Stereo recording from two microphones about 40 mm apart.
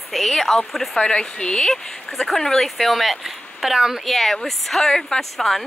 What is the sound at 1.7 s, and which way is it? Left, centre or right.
Speech, centre.